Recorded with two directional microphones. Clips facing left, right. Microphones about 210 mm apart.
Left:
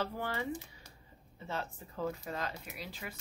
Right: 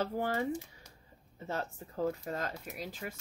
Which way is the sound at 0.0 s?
45° right (ahead or behind).